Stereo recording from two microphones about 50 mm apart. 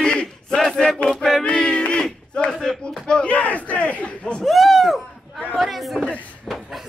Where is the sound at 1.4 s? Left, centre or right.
Centre.